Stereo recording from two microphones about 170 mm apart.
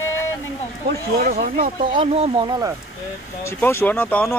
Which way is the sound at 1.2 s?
60° right (ahead or behind).